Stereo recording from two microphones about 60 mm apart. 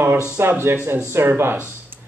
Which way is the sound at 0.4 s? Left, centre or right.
Right.